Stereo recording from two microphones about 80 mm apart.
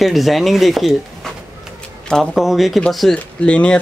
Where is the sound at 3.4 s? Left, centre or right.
Centre.